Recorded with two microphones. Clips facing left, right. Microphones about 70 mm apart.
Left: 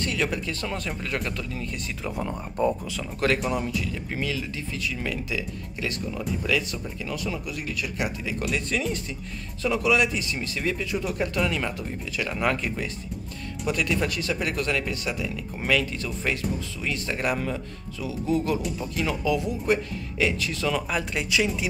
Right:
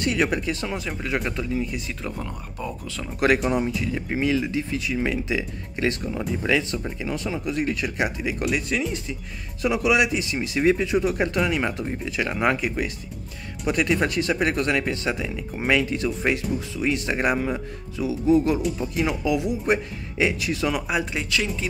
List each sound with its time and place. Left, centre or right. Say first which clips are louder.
0.0 s speech: right 4 dB; right
2.6 s speech: left 9 dB; left
3.4 s speech: right 4 dB; right
21.0 s speech: right 1 dB; centre